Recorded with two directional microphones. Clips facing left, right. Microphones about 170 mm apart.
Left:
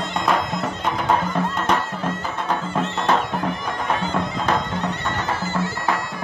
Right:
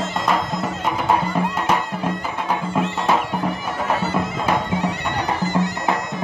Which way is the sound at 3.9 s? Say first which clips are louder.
Right 1 dB; 10° right (ahead or behind).